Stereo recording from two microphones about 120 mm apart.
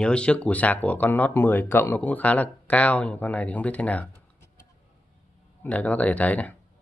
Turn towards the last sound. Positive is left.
turn(degrees=15)  # may be behind; listen again after turning